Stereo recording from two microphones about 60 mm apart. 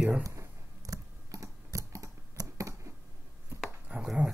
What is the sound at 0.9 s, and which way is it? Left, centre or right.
Typing, right.